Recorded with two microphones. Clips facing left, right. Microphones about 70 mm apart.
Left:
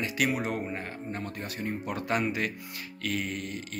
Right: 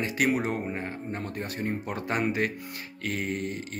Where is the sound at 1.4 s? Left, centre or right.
Right.